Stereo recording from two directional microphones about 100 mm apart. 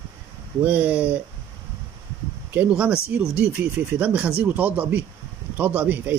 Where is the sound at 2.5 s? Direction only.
15° right (ahead or behind).